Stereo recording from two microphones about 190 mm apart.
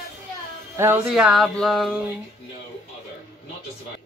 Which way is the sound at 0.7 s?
10° right (ahead or behind).